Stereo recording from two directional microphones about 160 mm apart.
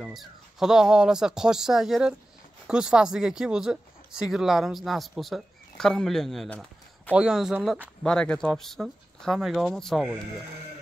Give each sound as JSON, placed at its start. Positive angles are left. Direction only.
{"t": 0.0, "sound": "speech", "side_deg": 0}
{"t": 8.0, "sound": "speech", "side_deg": 5}